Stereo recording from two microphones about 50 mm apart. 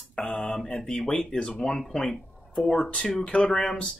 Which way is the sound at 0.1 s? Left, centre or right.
Centre.